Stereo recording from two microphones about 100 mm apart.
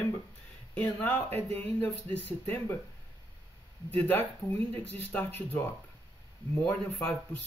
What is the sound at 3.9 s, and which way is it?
Speech, 20° left (ahead or behind).